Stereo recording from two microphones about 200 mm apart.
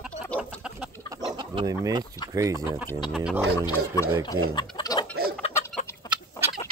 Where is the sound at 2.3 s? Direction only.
15° right (ahead or behind).